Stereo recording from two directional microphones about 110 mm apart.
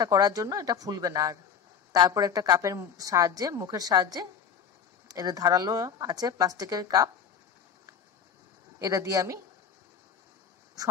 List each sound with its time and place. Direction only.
0.0 s a woman's voice: 35° right (ahead or behind)
8.7 s speech: 30° right (ahead or behind)